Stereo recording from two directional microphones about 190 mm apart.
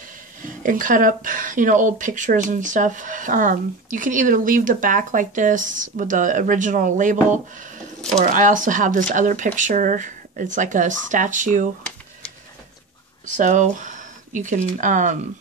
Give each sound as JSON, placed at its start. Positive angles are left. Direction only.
{"t": 0.4, "sound": "speech", "side_deg": -45}
{"t": 13.2, "sound": "speech", "side_deg": -40}